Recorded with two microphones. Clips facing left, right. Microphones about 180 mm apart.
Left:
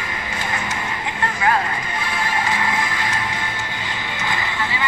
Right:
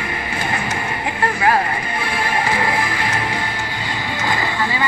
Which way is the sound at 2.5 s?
30° right (ahead or behind).